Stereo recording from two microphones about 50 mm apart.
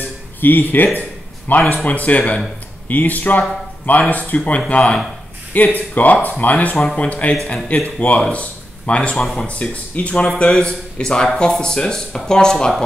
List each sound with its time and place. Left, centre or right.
0.4 s speech: left
9.1 s speech: centre
9.5 s speech: left; by 12.8 s centre